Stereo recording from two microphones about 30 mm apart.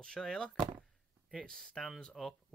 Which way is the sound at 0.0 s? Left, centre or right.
Left.